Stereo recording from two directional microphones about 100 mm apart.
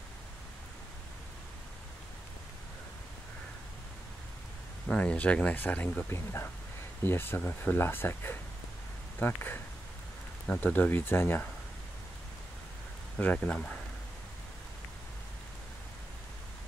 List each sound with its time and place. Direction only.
4.8 s speech: 15° left (ahead or behind)
13.2 s speech: 15° left (ahead or behind)